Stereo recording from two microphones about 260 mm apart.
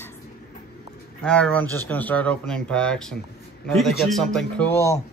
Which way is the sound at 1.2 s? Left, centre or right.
Centre.